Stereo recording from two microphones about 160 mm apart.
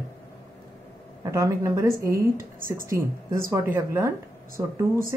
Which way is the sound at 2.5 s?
60° right (ahead or behind).